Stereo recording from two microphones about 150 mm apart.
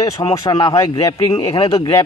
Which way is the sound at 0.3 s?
25° left (ahead or behind).